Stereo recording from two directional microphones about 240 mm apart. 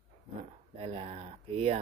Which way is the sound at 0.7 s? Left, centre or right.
Right.